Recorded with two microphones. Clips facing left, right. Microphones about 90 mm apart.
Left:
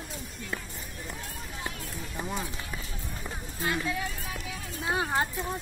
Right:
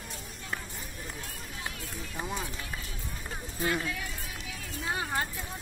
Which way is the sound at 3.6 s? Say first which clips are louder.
Left 1 dB; 25° left (ahead or behind).